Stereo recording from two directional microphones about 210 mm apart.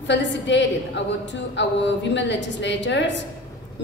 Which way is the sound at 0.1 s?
60° left (ahead or behind).